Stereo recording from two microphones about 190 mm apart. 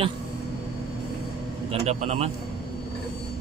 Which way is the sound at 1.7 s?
35° right (ahead or behind).